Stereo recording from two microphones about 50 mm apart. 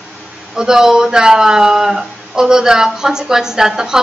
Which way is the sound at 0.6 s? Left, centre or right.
Centre.